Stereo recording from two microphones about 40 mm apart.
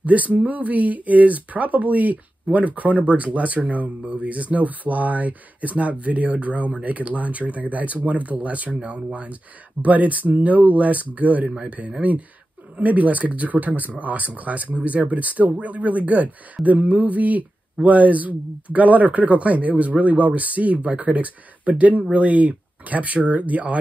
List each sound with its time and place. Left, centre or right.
0.0 s speech: right